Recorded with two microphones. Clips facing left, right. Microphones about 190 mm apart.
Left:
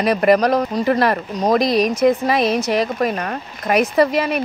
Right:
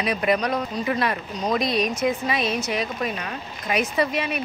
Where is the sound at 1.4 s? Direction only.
80° left.